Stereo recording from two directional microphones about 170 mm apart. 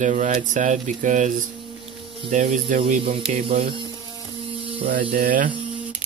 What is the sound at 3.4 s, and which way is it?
Speech, 30° right (ahead or behind).